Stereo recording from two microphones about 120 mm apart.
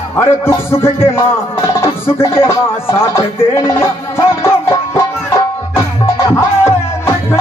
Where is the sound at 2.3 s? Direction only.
20° left (ahead or behind).